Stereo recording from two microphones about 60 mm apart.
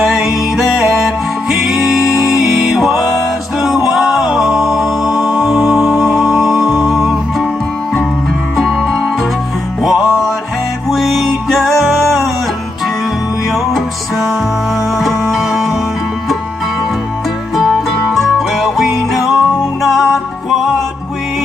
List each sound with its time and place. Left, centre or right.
0.0 s music: centre
8.5 s music: centre
13.5 s music: centre
17.6 s music: centre